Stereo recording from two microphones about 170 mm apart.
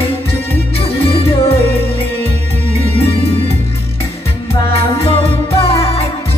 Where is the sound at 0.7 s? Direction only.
35° left (ahead or behind).